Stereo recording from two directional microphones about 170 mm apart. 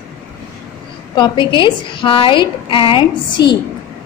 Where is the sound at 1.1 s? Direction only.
25° left (ahead or behind).